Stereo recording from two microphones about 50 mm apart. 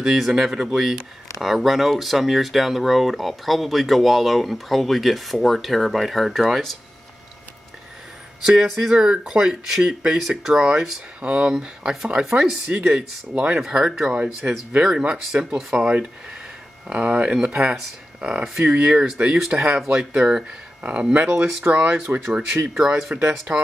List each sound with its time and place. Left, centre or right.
0.0 s speech: centre
8.5 s speech: centre
10.6 s speech: right
13.7 s speech: centre
14.4 s speech: right
14.8 s speech: centre
20.8 s speech: right
22.8 s speech: centre